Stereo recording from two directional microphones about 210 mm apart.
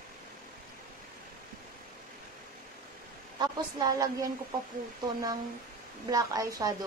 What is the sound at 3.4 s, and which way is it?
Speech, 15° right (ahead or behind).